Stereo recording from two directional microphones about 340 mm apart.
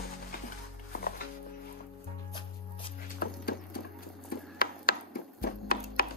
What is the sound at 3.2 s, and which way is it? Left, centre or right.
Horse, left.